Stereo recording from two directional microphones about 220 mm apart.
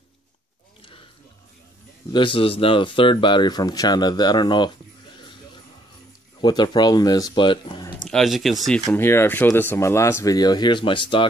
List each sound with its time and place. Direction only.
2.1 s speech: 25° left (ahead or behind)
6.4 s speech: 20° left (ahead or behind)
8.1 s speech: centre (ahead or behind)
8.8 s speech: 10° left (ahead or behind)